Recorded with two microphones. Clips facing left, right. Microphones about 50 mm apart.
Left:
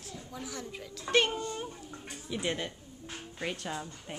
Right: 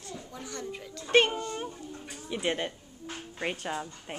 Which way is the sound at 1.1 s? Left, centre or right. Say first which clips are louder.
Right 4 dB; right.